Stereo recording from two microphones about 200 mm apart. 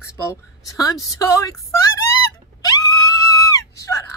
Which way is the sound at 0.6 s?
20° left (ahead or behind).